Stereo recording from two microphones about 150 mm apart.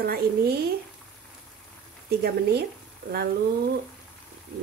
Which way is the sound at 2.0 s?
90° right.